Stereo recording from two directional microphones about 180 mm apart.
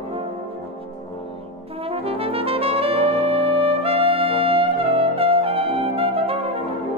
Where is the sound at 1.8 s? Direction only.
30° right (ahead or behind).